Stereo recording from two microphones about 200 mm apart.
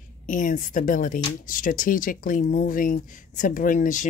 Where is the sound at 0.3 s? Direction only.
40° left (ahead or behind).